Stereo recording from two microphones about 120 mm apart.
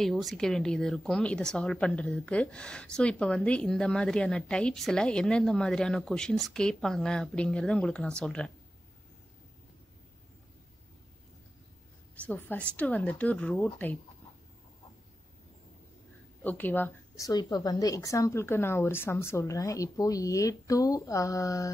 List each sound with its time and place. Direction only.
0.0 s a woman's voice: centre (ahead or behind)
12.3 s speech: 15° left (ahead or behind)
16.4 s speech: 15° left (ahead or behind)
17.2 s speech: 30° left (ahead or behind)